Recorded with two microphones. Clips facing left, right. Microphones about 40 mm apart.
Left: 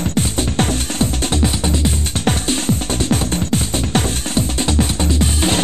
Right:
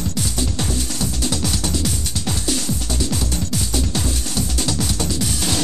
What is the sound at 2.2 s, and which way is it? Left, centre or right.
Music, left.